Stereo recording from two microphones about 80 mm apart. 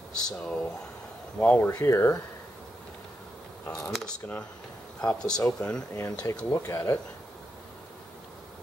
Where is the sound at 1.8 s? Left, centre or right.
Left.